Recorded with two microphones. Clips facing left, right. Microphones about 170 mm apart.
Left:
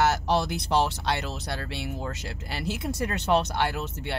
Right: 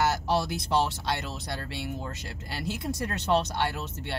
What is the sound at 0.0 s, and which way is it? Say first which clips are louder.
Speech: left 2 dB; 65° left (ahead or behind).